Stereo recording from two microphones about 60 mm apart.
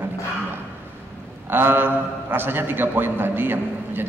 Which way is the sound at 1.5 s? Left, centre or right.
Right.